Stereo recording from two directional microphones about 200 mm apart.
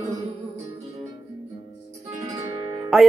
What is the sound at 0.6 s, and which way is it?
Music, 15° right (ahead or behind).